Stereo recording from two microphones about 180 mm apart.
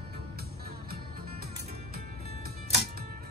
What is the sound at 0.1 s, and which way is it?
Music, 60° right (ahead or behind).